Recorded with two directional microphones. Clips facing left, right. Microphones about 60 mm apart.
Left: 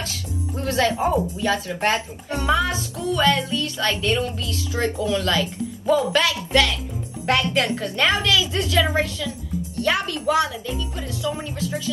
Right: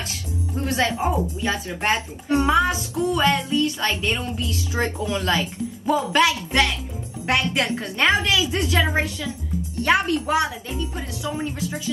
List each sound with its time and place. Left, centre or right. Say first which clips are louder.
0.0 s music: even; right
1.4 s a woman's voice: left 3 dB; right